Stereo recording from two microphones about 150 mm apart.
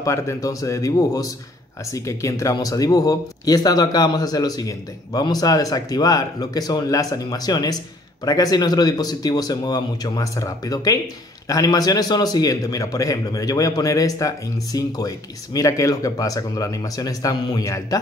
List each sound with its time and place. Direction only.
0.0 s a man's voice: 20° left (ahead or behind)